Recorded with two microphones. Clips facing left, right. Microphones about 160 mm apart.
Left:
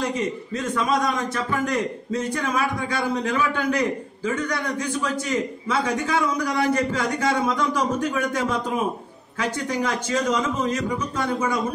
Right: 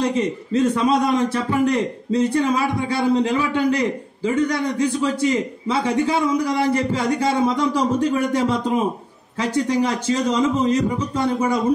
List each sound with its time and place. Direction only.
0.5 s a man's voice: 25° right (ahead or behind)